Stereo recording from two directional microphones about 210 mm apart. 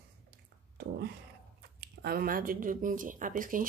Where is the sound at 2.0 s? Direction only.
45° right (ahead or behind).